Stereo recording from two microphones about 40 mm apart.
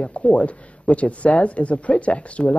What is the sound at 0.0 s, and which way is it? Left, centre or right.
Speech, left.